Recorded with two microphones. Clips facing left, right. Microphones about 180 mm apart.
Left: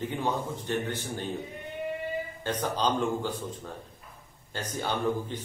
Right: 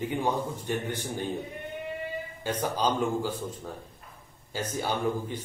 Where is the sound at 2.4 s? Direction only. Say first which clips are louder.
Right 1 dB; 10° right (ahead or behind).